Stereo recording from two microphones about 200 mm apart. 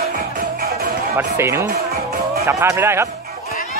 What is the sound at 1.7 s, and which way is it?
Music, 50° right (ahead or behind).